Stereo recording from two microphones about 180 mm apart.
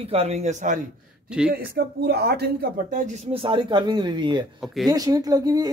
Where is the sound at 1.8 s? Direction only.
65° right (ahead or behind); by 3.3 s 45° right (ahead or behind).